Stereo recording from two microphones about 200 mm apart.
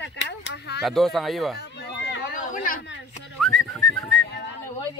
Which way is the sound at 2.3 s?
45° left (ahead or behind).